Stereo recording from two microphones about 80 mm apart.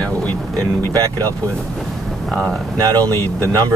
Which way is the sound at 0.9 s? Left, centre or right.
Right.